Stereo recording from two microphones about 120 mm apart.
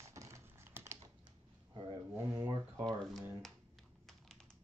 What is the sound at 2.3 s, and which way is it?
Speech, 30° right (ahead or behind).